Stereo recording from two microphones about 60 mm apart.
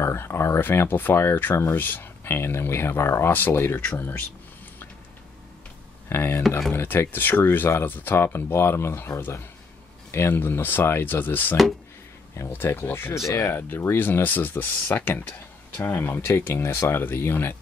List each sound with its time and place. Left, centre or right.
0.0 s speech: left
3.9 s speech: left
6.0 s speech: left
16.3 s speech: left